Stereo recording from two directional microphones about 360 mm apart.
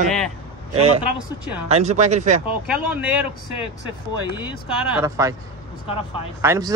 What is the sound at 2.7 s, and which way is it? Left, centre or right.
Speech, centre.